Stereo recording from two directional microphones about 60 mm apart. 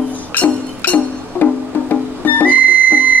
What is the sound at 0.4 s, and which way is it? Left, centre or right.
Music, left.